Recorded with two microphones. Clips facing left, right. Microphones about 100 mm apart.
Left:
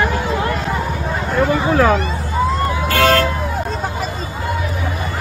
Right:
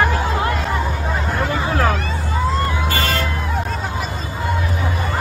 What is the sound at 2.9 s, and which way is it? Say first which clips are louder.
Vehicle: left 7 dB; 90° left.